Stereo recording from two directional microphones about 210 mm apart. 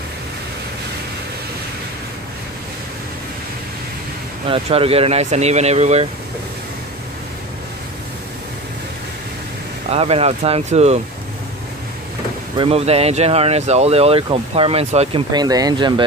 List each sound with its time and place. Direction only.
4.5 s speech: 25° right (ahead or behind)
9.8 s speech: 30° right (ahead or behind)
12.5 s speech: 30° right (ahead or behind)